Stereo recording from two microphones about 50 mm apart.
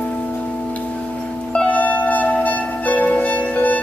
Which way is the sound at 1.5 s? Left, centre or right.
Left.